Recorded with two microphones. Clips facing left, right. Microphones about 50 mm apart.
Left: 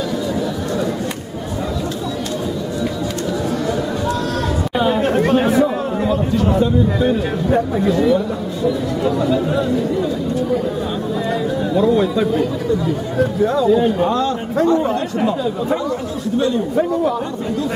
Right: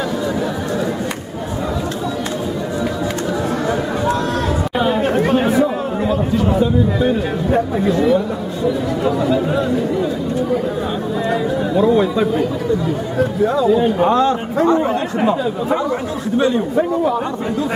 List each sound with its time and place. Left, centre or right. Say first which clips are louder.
3.6 s chatter: right 2 dB; right
4.7 s chatter: left 1 dB; centre
8.6 s speech: right 1 dB; centre
11.2 s speech: right 2 dB; centre
14.0 s speech: right 3 dB; right
16.3 s speech: right 2 dB; right
16.7 s speech: right 1 dB; centre